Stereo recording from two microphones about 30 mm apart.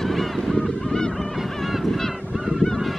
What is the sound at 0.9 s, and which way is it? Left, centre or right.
Goose, left.